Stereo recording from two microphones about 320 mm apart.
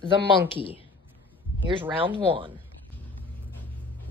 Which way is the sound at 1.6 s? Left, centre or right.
Centre.